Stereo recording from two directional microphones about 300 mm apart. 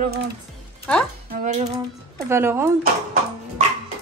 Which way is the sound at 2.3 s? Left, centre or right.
Centre.